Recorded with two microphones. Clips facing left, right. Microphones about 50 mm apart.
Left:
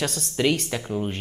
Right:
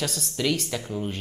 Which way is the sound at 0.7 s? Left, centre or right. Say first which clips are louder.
Left 3 dB; centre.